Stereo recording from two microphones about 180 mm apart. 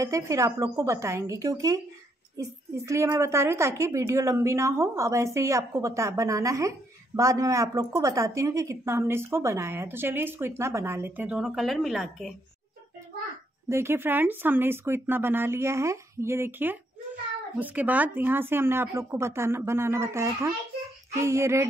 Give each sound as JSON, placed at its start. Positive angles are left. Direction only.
{"t": 0.0, "sound": "a woman's voice", "side_deg": -20}
{"t": 13.7, "sound": "a woman's voice", "side_deg": -15}